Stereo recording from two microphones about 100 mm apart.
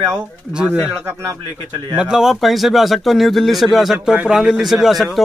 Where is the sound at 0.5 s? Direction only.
10° right (ahead or behind).